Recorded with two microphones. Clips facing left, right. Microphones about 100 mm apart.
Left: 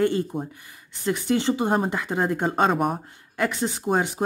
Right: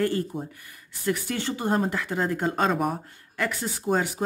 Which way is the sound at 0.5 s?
20° left (ahead or behind).